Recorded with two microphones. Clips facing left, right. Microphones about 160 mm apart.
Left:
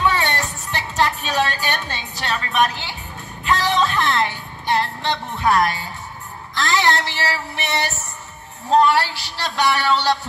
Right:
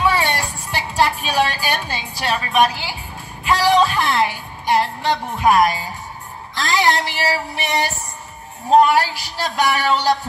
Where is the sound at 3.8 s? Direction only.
10° right (ahead or behind).